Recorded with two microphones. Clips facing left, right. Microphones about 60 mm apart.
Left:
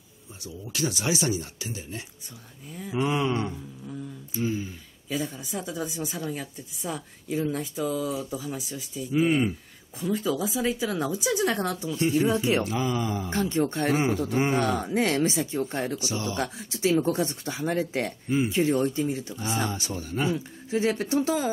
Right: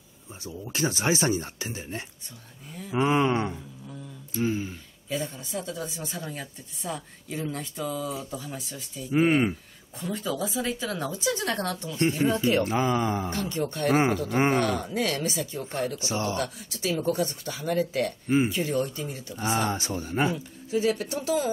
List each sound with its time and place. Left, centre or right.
0.5 s speech: right
2.9 s a sound: right
3.8 s a sound: centre
5.1 s speech: centre
9.1 s speech: right
9.9 s speech: centre
12.6 s speech: right
13.3 s speech: left
13.8 s speech: right
14.6 s speech: left
16.0 s speech: right
16.3 s speech: left
19.3 s speech: right
20.7 s speech: left